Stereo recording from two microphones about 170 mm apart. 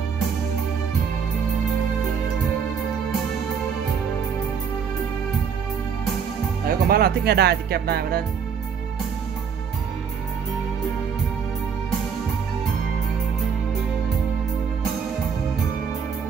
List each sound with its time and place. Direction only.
6.7 s speech: 60° right (ahead or behind)